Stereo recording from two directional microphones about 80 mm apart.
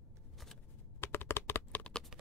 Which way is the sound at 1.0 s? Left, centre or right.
Left.